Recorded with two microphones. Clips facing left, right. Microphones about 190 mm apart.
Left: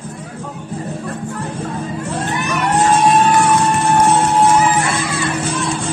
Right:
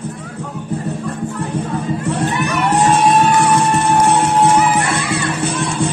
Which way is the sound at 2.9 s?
65° right (ahead or behind).